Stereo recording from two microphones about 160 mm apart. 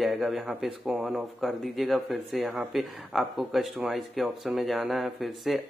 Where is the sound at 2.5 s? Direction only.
10° right (ahead or behind).